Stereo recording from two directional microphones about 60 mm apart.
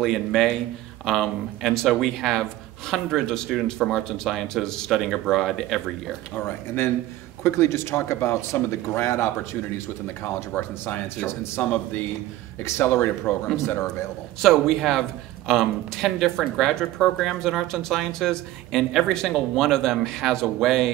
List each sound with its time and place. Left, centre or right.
0.0 s a man's voice: centre
6.3 s speech: left
11.6 s speech: left
12.6 s speech: left
14.4 s a man's voice: centre